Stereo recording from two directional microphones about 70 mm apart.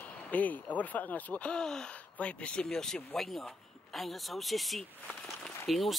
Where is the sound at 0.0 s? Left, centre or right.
Left.